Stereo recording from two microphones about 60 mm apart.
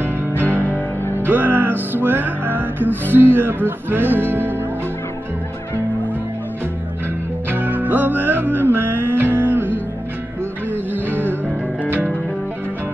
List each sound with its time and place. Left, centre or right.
0.4 s music: right
7.4 s music: right